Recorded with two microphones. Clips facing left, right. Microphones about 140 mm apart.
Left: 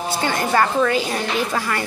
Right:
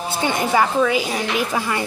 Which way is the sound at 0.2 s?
15° right (ahead or behind).